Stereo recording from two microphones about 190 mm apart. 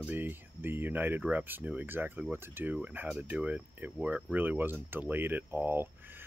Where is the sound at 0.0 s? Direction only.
10° right (ahead or behind).